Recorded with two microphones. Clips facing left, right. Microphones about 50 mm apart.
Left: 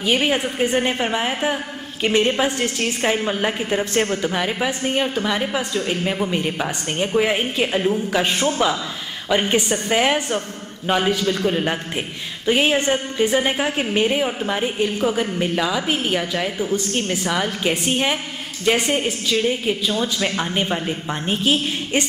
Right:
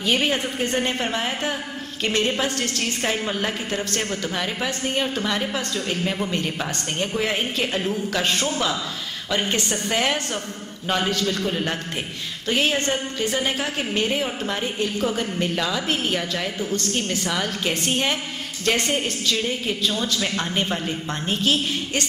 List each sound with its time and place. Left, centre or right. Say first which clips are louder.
0.0 s a woman's voice: left 3 dB; centre